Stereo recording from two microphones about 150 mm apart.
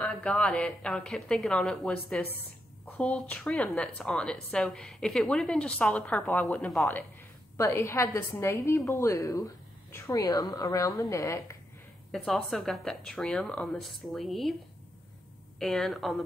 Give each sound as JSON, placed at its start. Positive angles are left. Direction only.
{"t": 0.0, "sound": "speech", "side_deg": 5}
{"t": 7.5, "sound": "a woman's voice", "side_deg": 20}
{"t": 12.1, "sound": "speech", "side_deg": 0}
{"t": 15.6, "sound": "speech", "side_deg": 0}